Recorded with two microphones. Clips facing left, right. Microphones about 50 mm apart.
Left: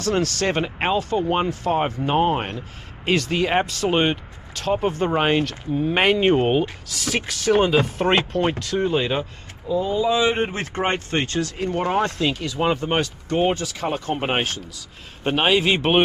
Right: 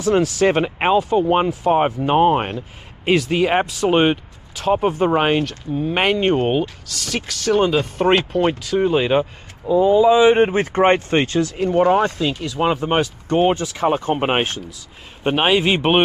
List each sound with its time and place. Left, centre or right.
0.0 s speech: centre